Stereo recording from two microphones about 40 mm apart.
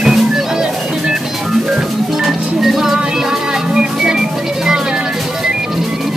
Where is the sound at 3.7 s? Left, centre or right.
Centre.